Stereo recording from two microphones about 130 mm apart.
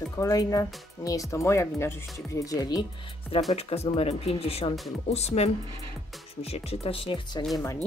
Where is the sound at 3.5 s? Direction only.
50° left (ahead or behind).